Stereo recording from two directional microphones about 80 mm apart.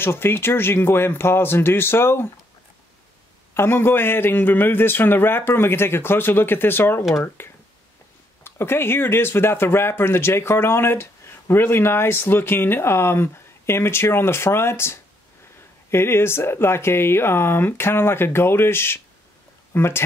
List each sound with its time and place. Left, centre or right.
0.0 s a man's voice: left
3.5 s a man's voice: left
7.4 s a sound: left
8.5 s speech: left